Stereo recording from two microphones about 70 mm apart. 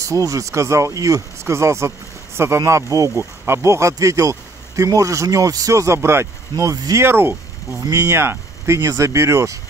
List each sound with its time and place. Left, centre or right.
0.0 s speech: right
6.5 s speech: right
7.0 s speech: right
7.8 s speech: right